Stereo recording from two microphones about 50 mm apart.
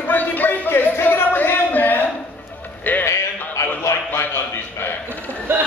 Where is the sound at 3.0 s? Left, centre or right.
Left.